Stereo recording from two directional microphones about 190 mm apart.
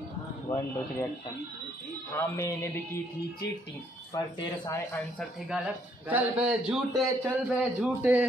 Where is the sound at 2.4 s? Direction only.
15° left (ahead or behind).